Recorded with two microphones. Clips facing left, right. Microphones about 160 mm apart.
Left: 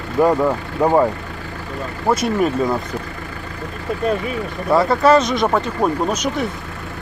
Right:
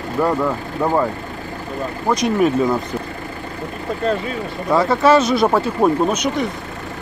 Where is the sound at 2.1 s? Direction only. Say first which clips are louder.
Right 1 dB; centre (ahead or behind).